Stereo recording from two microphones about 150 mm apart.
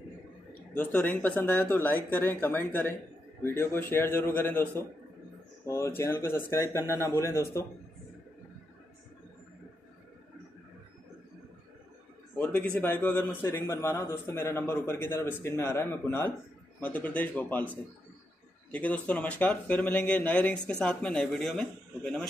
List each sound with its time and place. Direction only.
0.7 s a man's voice: 10° left (ahead or behind)
12.4 s speech: 10° left (ahead or behind)